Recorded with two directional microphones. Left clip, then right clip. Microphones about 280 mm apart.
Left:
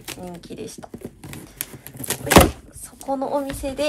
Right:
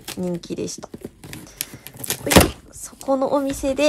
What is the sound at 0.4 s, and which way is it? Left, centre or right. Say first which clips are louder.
Speech: right 6 dB; right.